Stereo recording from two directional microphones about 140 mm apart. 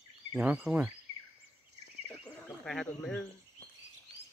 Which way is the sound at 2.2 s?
5° left (ahead or behind).